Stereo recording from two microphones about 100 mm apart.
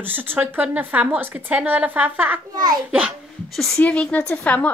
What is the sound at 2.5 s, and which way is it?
Speech, 45° right (ahead or behind).